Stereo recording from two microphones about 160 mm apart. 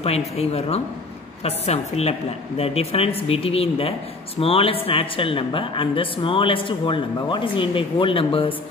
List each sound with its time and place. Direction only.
0.0 s a woman's voice: 40° left (ahead or behind)